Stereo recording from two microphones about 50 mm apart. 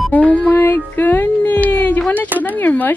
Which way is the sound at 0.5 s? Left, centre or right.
Left.